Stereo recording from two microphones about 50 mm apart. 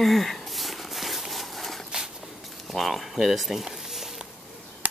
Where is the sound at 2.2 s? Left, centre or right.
Centre.